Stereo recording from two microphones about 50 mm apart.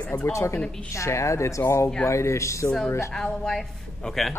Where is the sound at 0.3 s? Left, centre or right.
Left.